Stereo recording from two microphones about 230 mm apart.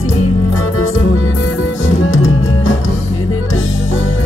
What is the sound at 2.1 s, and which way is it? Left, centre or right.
Music, left.